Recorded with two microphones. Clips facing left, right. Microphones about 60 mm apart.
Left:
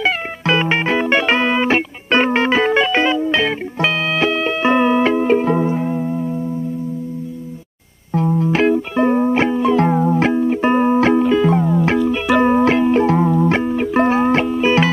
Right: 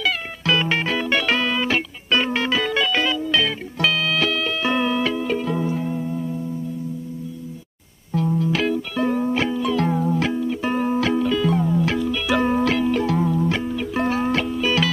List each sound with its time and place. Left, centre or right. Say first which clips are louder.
0.0 s music: left 5 dB; left
8.1 s music: left 4 dB; left